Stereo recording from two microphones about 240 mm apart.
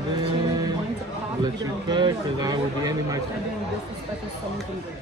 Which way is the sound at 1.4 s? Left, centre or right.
Centre.